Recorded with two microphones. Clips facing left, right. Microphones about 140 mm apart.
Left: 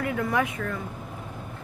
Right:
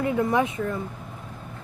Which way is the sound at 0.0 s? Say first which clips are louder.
Right 3 dB; 25° right (ahead or behind).